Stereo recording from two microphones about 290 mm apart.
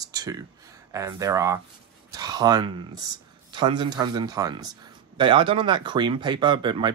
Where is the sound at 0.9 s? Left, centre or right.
Centre.